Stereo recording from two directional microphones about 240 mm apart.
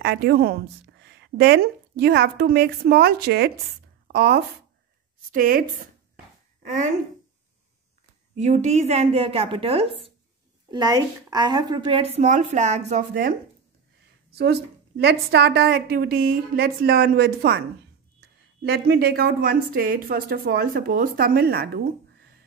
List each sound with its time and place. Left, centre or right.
0.0 s a woman's voice: right
8.4 s a woman's voice: right
14.3 s a woman's voice: right
18.6 s a woman's voice: right